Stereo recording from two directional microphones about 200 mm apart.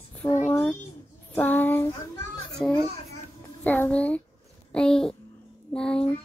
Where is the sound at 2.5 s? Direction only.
Centre (ahead or behind).